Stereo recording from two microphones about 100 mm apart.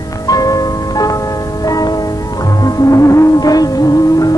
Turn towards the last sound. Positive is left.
turn(degrees=35)  # may be behind; listen again after turning